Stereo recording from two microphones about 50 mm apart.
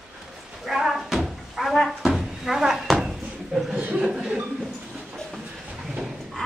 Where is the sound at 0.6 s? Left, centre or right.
Centre.